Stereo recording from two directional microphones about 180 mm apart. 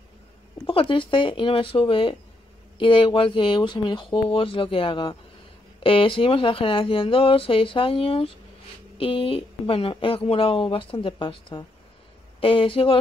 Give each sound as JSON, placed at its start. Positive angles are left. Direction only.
{"t": 0.7, "sound": "speech", "side_deg": 30}